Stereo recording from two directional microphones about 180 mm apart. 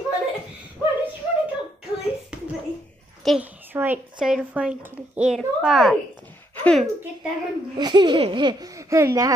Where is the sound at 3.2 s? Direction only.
5° right (ahead or behind).